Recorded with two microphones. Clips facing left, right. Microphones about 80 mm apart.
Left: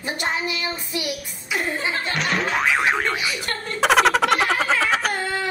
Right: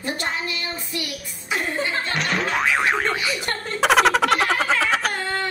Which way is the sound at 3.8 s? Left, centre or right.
Centre.